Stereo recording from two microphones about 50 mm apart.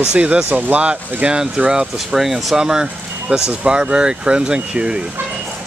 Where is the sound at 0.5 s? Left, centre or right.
Right.